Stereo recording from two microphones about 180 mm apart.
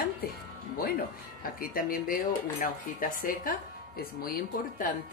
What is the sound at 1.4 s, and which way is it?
Speech, 50° left (ahead or behind).